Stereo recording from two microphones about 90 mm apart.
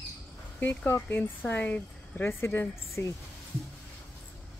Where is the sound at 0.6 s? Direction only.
20° left (ahead or behind).